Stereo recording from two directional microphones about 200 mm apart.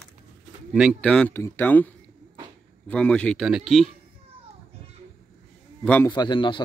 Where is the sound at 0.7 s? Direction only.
Centre (ahead or behind).